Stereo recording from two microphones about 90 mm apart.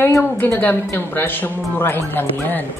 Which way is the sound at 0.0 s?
25° left (ahead or behind).